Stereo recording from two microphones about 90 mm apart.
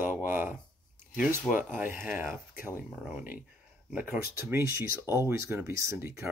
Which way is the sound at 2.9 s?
10° right (ahead or behind).